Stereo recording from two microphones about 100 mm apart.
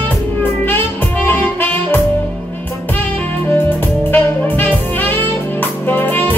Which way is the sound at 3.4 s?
20° left (ahead or behind).